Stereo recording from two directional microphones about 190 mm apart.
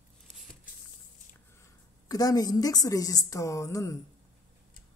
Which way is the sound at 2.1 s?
20° left (ahead or behind).